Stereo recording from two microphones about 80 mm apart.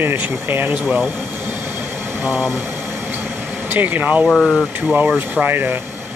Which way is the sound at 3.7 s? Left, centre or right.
Right.